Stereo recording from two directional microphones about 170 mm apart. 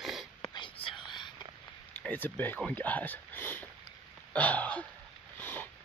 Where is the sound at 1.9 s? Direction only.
10° left (ahead or behind).